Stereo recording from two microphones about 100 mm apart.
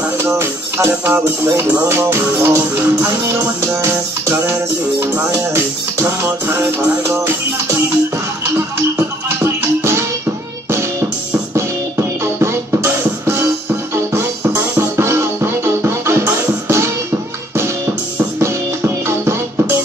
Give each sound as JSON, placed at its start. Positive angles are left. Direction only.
{"t": 0.2, "sound": "music", "side_deg": -25}
{"t": 9.4, "sound": "music", "side_deg": -25}
{"t": 12.4, "sound": "music", "side_deg": -25}
{"t": 14.5, "sound": "music", "side_deg": -25}